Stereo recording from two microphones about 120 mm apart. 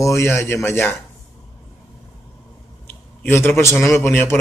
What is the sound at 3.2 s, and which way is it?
Speech, 20° left (ahead or behind).